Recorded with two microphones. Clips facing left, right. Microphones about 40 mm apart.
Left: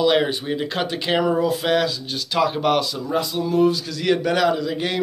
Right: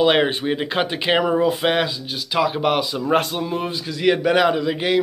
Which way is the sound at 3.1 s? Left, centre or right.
Right.